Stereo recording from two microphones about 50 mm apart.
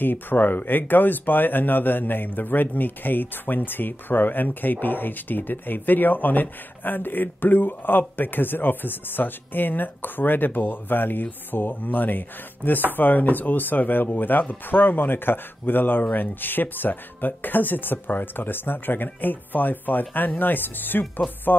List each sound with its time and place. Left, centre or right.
0.0 s speech: left